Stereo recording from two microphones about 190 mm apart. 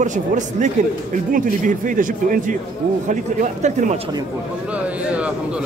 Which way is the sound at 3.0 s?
40° right (ahead or behind).